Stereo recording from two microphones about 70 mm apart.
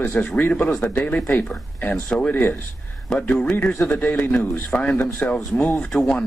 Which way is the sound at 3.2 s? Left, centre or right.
Centre.